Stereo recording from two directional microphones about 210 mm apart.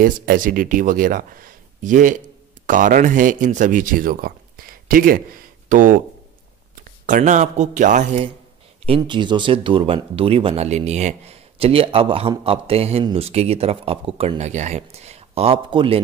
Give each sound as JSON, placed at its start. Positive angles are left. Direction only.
{"t": 0.0, "sound": "speech", "side_deg": -45}
{"t": 7.1, "sound": "speech", "side_deg": -35}
{"t": 8.8, "sound": "speech", "side_deg": -25}